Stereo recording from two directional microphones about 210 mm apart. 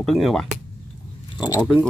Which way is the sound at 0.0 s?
Centre (ahead or behind).